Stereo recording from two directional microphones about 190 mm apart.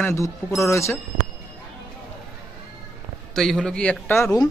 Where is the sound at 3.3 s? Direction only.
Centre (ahead or behind).